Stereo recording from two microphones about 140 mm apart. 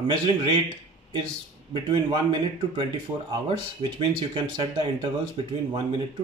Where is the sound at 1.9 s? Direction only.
35° right (ahead or behind).